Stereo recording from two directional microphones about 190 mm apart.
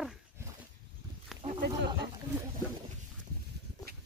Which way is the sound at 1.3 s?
Centre (ahead or behind).